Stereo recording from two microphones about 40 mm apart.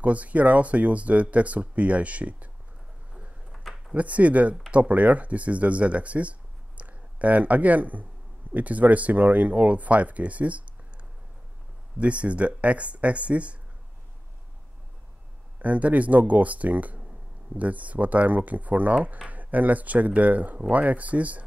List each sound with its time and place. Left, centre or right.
0.0 s speech: right
3.9 s speech: right
12.0 s speech: right
15.6 s speech: right